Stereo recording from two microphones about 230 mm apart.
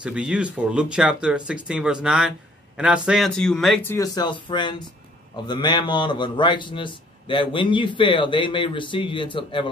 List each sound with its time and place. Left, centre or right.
0.0 s a man's voice: centre; by 9.7 s left